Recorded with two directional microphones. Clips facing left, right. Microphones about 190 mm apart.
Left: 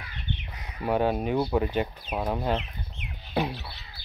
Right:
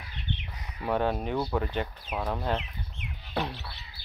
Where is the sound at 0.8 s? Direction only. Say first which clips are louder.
Left 3 dB; 10° left (ahead or behind).